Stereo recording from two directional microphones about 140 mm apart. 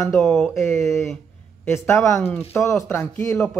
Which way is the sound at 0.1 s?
5° left (ahead or behind).